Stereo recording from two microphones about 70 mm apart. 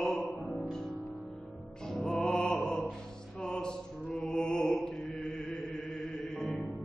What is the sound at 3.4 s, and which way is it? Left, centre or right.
Mantra, centre.